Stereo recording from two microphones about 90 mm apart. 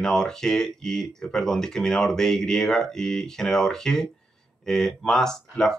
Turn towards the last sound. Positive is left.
turn(degrees=5)  # may be behind; listen again after turning